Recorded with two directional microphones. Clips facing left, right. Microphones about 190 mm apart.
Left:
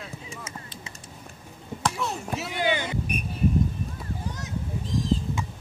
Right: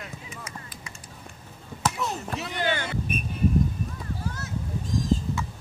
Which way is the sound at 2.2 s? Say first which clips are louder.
Left 4 dB; 5° left (ahead or behind).